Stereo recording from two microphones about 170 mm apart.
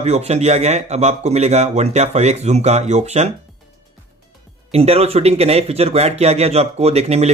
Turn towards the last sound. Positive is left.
turn(degrees=-40)  # may be behind; listen again after turning